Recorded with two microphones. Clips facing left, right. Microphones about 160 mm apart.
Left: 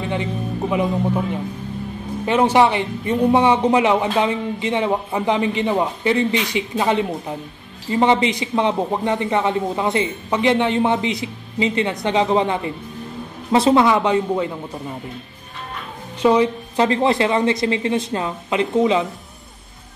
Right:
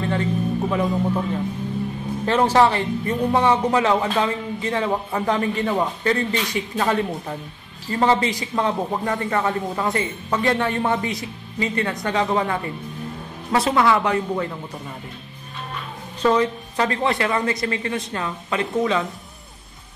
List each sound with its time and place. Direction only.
0.0 s speech: 15° left (ahead or behind)
16.2 s a woman's voice: 15° left (ahead or behind)
16.7 s speech: 25° left (ahead or behind)